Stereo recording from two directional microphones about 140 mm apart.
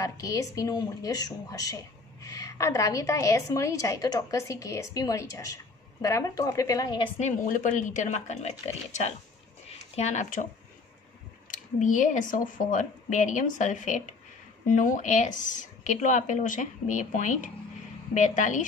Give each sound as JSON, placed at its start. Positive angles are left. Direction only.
{"t": 0.0, "sound": "a woman's voice", "side_deg": 25}
{"t": 7.4, "sound": "speech", "side_deg": 65}
{"t": 9.7, "sound": "speech", "side_deg": 50}
{"t": 11.5, "sound": "speech", "side_deg": 65}